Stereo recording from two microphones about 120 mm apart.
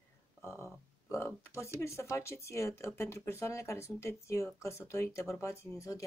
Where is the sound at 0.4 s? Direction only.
20° left (ahead or behind).